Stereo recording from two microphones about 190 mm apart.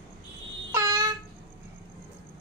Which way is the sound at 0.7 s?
15° right (ahead or behind).